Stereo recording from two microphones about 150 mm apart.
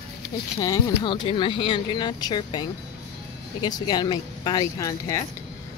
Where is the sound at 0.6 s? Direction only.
25° left (ahead or behind).